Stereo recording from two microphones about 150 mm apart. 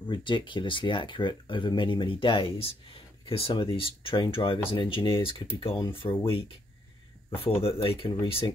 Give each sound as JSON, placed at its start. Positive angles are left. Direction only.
{"t": 0.1, "sound": "speech", "side_deg": 35}